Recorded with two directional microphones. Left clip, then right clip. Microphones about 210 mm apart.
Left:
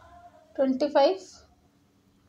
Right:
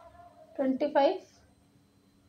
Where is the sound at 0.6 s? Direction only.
30° left (ahead or behind).